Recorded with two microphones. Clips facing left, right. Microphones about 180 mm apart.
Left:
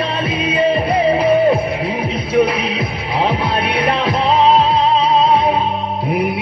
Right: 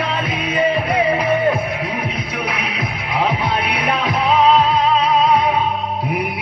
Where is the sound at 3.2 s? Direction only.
30° left (ahead or behind).